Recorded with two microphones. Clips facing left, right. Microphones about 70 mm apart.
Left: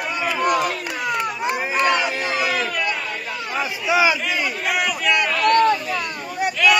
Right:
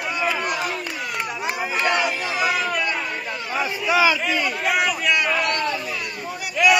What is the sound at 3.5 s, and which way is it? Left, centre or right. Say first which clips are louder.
A man's voice: even; centre.